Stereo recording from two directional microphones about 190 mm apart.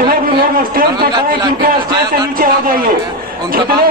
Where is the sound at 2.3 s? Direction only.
50° right (ahead or behind).